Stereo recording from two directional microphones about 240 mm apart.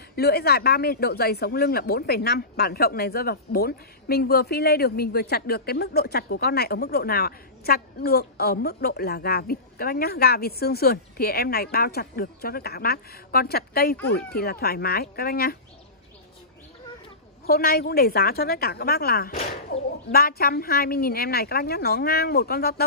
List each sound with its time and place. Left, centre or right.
0.1 s speech: left
17.5 s speech: left